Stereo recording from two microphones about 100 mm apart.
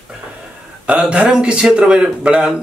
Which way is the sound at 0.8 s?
10° right (ahead or behind).